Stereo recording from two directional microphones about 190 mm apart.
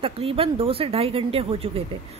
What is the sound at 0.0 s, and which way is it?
Speech, 30° right (ahead or behind).